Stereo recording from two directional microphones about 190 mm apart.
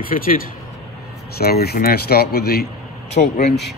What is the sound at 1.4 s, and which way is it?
Speech, 55° left (ahead or behind).